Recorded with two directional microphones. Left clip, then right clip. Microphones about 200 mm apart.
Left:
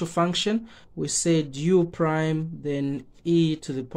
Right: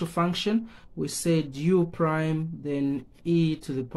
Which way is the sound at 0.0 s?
30° left (ahead or behind).